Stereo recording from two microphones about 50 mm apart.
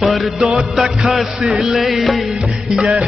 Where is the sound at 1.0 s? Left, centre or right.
Centre.